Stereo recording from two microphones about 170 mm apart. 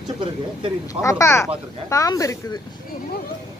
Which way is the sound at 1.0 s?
15° left (ahead or behind).